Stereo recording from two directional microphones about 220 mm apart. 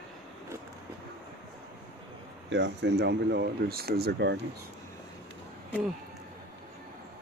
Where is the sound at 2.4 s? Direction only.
50° right (ahead or behind).